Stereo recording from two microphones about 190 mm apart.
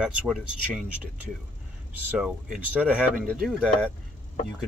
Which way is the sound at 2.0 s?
5° right (ahead or behind).